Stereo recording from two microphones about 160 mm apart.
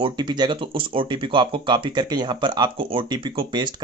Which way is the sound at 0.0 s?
25° right (ahead or behind).